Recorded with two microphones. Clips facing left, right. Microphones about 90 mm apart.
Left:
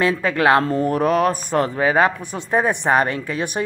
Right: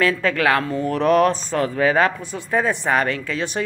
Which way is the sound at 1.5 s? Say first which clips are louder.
Left 1 dB; 20° left (ahead or behind).